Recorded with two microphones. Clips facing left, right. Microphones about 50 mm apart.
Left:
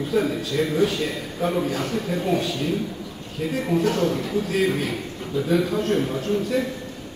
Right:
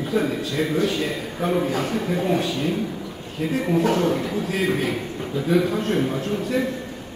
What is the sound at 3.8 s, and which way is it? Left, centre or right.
A man's voice, right.